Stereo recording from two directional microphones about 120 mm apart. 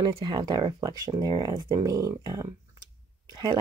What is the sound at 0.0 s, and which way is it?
Speech, 35° right (ahead or behind).